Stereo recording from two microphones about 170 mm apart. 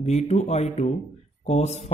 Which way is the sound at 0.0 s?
40° left (ahead or behind).